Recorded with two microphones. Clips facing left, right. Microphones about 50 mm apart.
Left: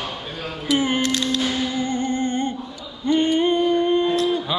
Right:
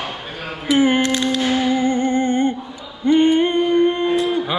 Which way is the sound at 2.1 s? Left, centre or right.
Right.